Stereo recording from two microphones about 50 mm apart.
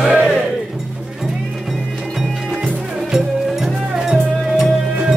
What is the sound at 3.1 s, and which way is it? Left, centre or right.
Music, centre.